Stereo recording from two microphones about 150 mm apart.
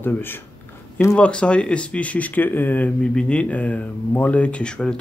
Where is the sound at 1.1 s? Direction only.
5° left (ahead or behind).